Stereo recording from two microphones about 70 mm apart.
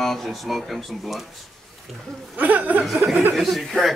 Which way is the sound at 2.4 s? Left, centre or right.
Right.